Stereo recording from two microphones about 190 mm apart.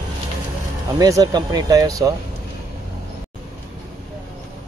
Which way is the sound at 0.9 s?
20° right (ahead or behind).